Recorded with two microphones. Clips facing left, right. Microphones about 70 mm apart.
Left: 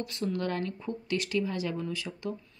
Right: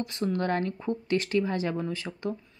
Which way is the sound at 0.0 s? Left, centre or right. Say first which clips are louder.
Right 3 dB; right.